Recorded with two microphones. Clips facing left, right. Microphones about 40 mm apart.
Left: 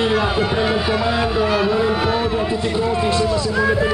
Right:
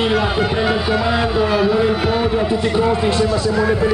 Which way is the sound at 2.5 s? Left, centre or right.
Right.